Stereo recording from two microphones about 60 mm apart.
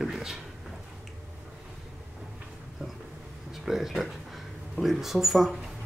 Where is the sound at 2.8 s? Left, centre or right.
Centre.